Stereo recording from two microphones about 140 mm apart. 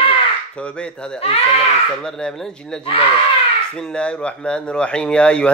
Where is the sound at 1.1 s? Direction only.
45° left (ahead or behind).